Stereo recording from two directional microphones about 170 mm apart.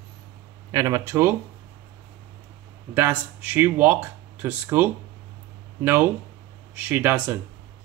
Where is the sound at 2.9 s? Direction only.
10° right (ahead or behind).